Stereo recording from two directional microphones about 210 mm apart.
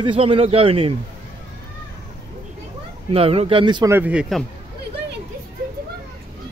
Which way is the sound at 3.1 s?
30° right (ahead or behind).